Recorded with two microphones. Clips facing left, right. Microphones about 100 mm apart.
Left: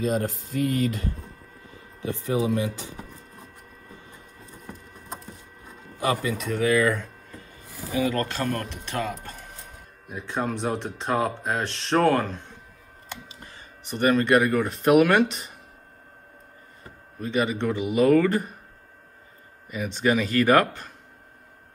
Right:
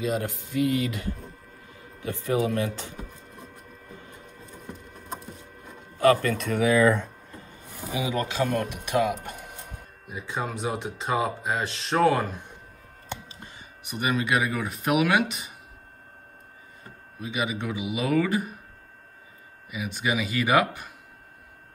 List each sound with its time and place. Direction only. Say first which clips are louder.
0.0 s speech: left 2 dB; 40° left (ahead or behind)
2.0 s speech: even; 20° left (ahead or behind)
5.9 s a man's voice: right 5 dB; 15° left (ahead or behind)
6.5 s speech: even; 15° right (ahead or behind)
7.8 s speech: left 3 dB; 15° right (ahead or behind)
10.0 s speech: left 3 dB; centre (ahead or behind)
13.1 s a sound: right 3 dB; 20° right (ahead or behind)
13.8 s speech: left 6 dB; 5° right (ahead or behind)
17.2 s speech: left 5 dB; 5° right (ahead or behind)
19.7 s speech: left 5 dB; 5° right (ahead or behind)